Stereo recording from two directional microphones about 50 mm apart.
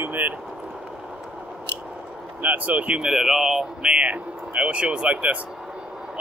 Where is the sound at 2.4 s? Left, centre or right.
Right.